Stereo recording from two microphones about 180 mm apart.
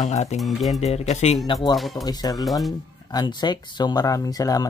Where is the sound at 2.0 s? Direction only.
20° left (ahead or behind).